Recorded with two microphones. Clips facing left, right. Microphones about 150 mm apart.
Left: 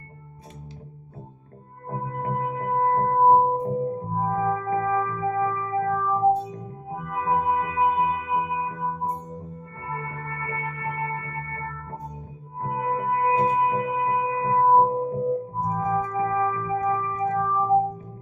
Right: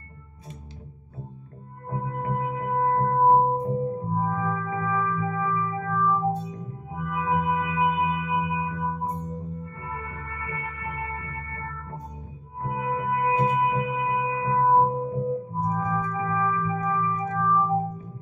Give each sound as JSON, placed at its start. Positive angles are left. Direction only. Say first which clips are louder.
{"t": 1.9, "sound": "music", "louder": "even", "side_deg": 40}
{"t": 15.7, "sound": "organ", "louder": "left 4 dB", "side_deg": 40}